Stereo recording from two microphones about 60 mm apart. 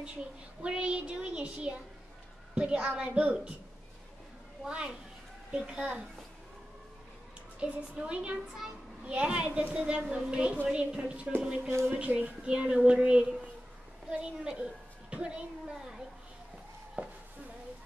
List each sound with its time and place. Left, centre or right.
0.6 s a woman's voice: centre
4.6 s a woman's voice: centre
7.6 s a child's voice: centre
17.0 s a sound: right